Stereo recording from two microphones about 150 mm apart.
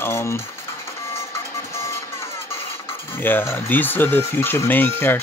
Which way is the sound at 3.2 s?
15° left (ahead or behind).